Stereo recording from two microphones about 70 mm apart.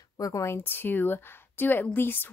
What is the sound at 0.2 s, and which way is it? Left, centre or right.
Speech, left.